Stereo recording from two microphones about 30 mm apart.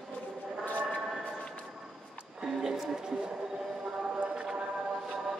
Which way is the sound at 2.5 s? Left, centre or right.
Centre.